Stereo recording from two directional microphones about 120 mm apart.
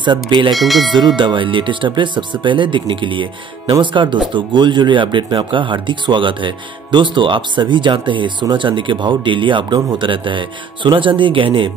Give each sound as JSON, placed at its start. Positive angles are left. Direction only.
{"t": 0.0, "sound": "speech", "side_deg": -40}
{"t": 0.6, "sound": "speech", "side_deg": 0}
{"t": 1.1, "sound": "speech", "side_deg": -40}